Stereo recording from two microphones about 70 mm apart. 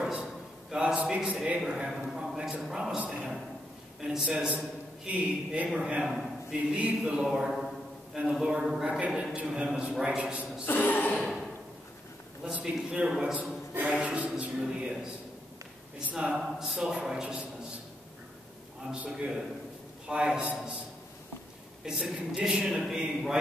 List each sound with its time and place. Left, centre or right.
0.0 s a sound: centre
1.1 s a man's voice: centre
10.6 s speech: left
11.1 s a sound: centre
12.5 s a man's voice: centre
16.1 s a man's voice: centre
18.9 s a man's voice: centre
21.8 s a man's voice: centre